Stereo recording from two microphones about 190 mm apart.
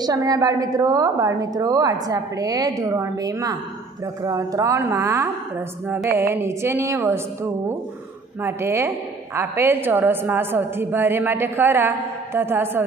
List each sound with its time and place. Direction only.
0.0 s a woman's voice: 20° right (ahead or behind)